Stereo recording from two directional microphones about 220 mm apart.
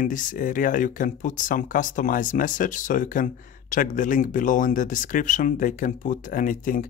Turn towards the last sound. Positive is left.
turn(degrees=40)  # may be behind; listen again after turning